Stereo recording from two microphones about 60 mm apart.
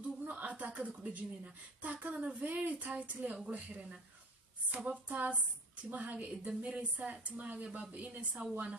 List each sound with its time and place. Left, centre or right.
0.2 s speech: right